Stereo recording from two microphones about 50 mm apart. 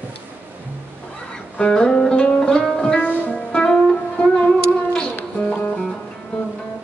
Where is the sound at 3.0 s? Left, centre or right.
Left.